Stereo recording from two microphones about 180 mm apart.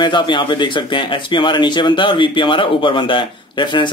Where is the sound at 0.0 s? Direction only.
25° left (ahead or behind).